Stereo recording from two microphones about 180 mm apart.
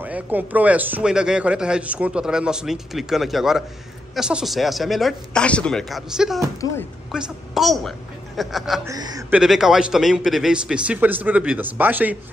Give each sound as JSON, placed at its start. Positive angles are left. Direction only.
{"t": 0.0, "sound": "a man's voice", "side_deg": -10}
{"t": 8.8, "sound": "speech", "side_deg": -20}
{"t": 9.3, "sound": "a man's voice", "side_deg": -5}